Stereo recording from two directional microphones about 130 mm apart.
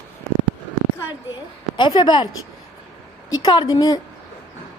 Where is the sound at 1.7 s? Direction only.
35° left (ahead or behind).